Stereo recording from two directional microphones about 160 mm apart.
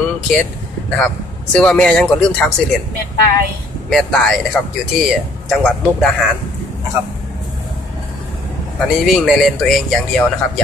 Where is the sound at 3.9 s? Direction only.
5° left (ahead or behind).